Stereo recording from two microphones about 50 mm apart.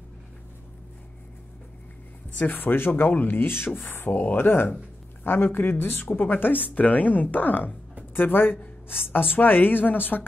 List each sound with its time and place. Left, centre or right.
2.3 s a woman's voice: left